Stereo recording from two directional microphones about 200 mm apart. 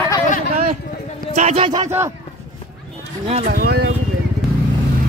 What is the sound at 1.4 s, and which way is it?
Speech, 30° right (ahead or behind).